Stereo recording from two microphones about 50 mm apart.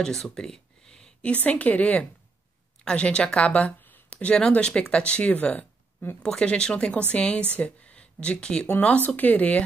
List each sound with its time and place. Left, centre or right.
0.0 s a sound: centre
1.3 s a woman's voice: left
2.8 s a woman's voice: centre
6.2 s speech: centre
9.0 s a woman's voice: left